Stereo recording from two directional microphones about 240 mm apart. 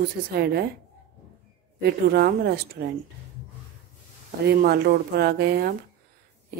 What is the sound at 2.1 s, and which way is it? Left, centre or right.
Speech, right.